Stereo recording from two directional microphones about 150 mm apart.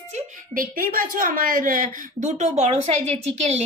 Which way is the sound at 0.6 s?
70° right (ahead or behind).